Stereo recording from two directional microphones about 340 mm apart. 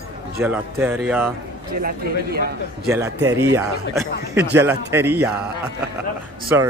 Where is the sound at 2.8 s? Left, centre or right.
Centre.